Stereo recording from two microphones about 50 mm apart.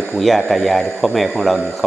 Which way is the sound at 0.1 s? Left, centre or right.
Centre.